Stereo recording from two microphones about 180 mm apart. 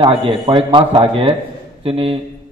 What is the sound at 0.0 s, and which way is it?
A man's voice, 30° right (ahead or behind).